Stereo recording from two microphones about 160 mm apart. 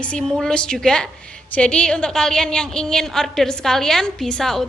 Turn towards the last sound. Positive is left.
turn(degrees=5)  # may be behind; listen again after turning